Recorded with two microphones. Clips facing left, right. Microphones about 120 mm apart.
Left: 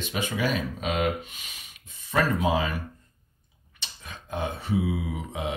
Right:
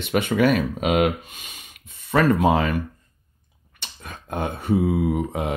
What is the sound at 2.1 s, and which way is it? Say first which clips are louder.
Speech: right 6 dB; 60° right (ahead or behind).